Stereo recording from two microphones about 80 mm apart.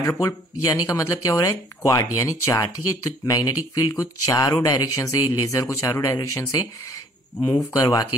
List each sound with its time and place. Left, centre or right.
0.0 s speech: left